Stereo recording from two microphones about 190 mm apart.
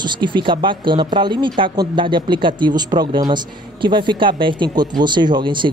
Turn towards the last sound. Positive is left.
turn(degrees=-25)  # may be behind; listen again after turning